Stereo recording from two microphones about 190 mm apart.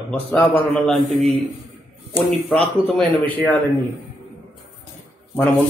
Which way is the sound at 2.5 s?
5° left (ahead or behind).